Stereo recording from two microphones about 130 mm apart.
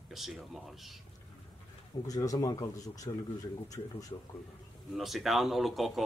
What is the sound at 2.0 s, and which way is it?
Speech, 30° left (ahead or behind).